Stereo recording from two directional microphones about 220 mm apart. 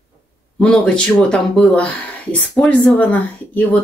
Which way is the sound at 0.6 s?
5° left (ahead or behind).